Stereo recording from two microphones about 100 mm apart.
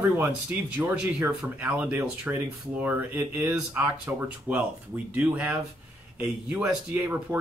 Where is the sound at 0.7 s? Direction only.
20° right (ahead or behind).